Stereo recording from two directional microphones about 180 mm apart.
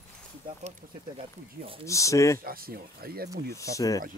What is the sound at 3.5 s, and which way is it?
Speech, 15° left (ahead or behind).